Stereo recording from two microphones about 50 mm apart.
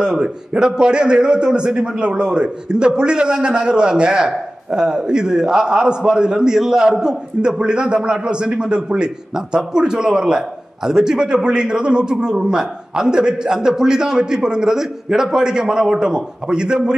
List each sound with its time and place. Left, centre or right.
0.0 s a man's voice: centre